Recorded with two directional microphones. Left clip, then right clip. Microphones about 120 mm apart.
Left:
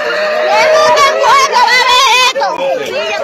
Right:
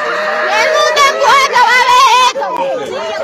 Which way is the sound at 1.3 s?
90° right.